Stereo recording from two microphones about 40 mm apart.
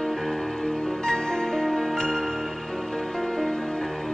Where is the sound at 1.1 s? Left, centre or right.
Centre.